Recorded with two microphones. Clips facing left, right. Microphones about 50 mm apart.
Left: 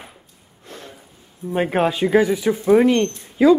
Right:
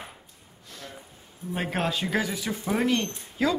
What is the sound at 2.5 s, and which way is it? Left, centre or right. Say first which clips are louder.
Speech: left 10 dB; centre.